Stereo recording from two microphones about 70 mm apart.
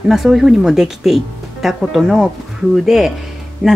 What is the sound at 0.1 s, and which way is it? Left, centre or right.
Speech, centre.